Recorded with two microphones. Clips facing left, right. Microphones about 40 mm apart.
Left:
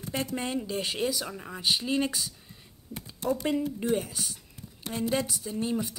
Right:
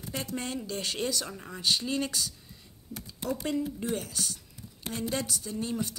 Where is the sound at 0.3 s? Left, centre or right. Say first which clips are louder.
Left 3 dB; centre.